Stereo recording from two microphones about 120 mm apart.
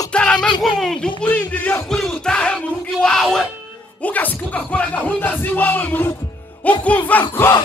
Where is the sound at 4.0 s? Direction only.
15° left (ahead or behind).